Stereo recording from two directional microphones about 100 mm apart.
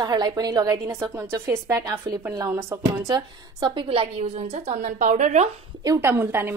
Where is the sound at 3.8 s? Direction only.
80° right.